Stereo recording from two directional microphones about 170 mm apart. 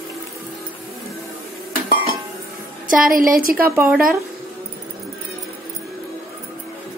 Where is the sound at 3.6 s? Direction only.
15° right (ahead or behind).